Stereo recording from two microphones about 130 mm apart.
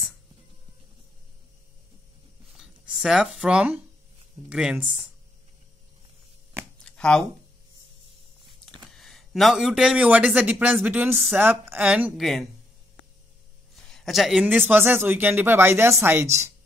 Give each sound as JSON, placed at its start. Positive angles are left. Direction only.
{"t": 2.5, "sound": "a sound", "side_deg": -5}
{"t": 4.5, "sound": "a man's voice", "side_deg": -5}
{"t": 6.8, "sound": "a sound", "side_deg": 5}
{"t": 8.9, "sound": "a man's voice", "side_deg": 0}
{"t": 13.9, "sound": "a man's voice", "side_deg": 0}
{"t": 14.4, "sound": "a man's voice", "side_deg": -15}